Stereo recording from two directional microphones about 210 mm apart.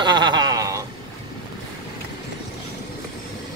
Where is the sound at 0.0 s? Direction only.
20° right (ahead or behind).